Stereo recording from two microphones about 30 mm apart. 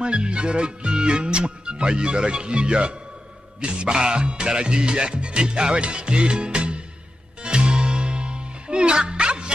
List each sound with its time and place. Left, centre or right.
0.0 s music: right